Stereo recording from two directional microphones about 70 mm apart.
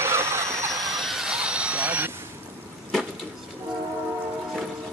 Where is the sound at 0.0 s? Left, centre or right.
Right.